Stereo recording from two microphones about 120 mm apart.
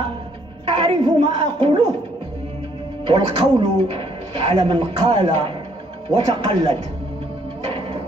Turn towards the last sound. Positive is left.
turn(degrees=-40)  # may be behind; listen again after turning